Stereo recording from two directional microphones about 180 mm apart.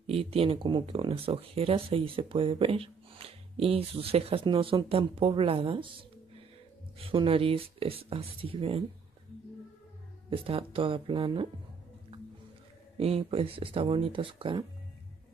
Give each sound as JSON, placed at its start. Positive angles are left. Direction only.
{"t": 0.0, "sound": "speech", "side_deg": -35}
{"t": 7.0, "sound": "speech", "side_deg": -30}
{"t": 10.3, "sound": "speech", "side_deg": -30}
{"t": 12.9, "sound": "speech", "side_deg": -35}